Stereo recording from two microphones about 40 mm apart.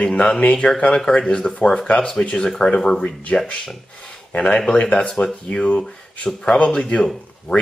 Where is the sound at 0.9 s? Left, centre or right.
Centre.